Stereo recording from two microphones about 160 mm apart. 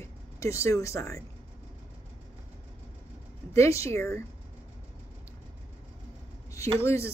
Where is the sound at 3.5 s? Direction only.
20° left (ahead or behind).